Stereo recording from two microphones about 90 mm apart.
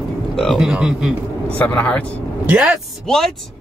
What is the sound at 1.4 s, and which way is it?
Speech, 15° left (ahead or behind).